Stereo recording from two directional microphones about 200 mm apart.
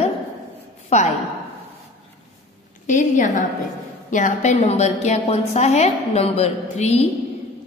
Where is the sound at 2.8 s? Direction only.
40° left (ahead or behind).